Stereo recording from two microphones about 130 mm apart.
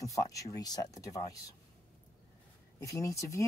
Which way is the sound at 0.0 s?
25° left (ahead or behind).